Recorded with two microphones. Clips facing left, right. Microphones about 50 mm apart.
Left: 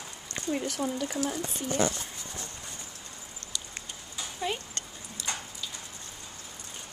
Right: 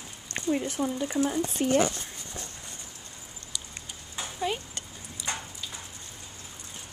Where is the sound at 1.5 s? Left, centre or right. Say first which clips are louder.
Right 8 dB; right.